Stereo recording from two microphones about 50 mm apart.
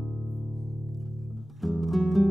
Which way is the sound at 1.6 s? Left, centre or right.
Centre.